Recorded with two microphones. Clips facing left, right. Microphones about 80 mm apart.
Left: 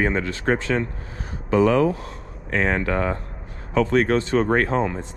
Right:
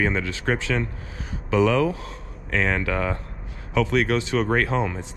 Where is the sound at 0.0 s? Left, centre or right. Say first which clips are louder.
Left 2 dB; left.